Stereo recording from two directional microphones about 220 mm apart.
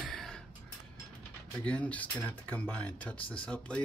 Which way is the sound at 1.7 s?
5° left (ahead or behind).